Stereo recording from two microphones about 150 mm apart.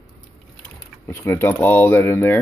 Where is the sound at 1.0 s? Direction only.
15° left (ahead or behind).